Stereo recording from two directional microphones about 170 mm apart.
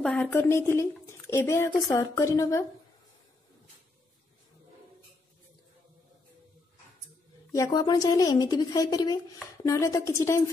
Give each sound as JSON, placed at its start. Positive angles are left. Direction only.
{"t": 0.0, "sound": "a woman's voice", "side_deg": 5}
{"t": 0.3, "sound": "speech", "side_deg": 15}
{"t": 7.5, "sound": "a woman's voice", "side_deg": 20}